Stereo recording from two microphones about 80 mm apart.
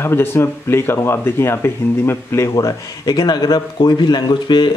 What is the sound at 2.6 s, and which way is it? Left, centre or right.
A man's voice, left.